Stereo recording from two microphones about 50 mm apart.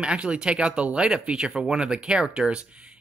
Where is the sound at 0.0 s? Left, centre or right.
Right.